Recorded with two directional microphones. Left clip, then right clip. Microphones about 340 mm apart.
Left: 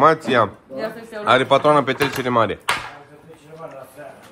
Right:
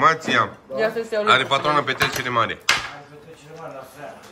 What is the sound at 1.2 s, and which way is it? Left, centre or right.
A man's voice, centre.